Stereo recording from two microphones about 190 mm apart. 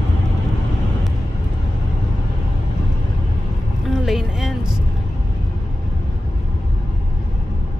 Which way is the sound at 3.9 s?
Centre (ahead or behind).